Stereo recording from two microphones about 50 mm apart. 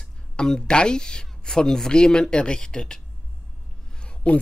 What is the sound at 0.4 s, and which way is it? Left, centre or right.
Speech, centre.